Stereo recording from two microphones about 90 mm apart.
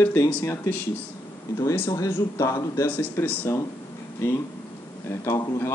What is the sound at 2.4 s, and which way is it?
Speech, 35° left (ahead or behind).